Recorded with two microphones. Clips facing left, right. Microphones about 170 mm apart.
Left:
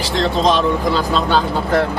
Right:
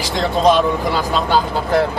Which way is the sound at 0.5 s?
10° right (ahead or behind).